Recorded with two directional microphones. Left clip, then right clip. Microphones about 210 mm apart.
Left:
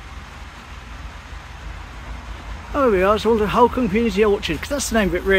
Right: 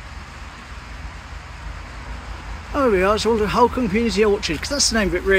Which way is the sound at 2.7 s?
Centre (ahead or behind).